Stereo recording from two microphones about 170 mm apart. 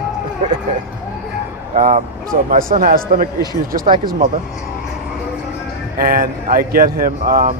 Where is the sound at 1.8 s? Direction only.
45° right (ahead or behind).